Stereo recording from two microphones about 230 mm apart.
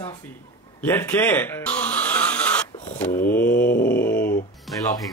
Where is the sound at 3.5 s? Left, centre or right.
Left.